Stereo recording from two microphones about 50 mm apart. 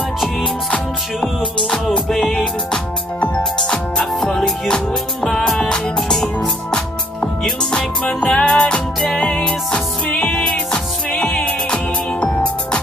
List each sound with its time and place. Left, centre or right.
1.2 s music: centre
8.1 s music: centre
11.1 s music: left